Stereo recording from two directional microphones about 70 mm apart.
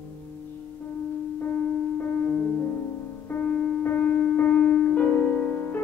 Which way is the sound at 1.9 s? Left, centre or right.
Left.